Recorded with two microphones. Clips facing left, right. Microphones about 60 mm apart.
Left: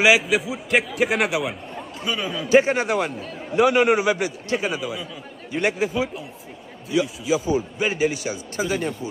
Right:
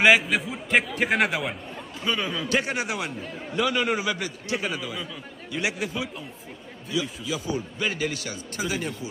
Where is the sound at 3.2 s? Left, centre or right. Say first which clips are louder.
Left 2 dB; centre.